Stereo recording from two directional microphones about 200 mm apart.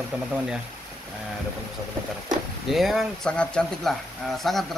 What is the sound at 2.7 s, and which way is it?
Speech, centre (ahead or behind).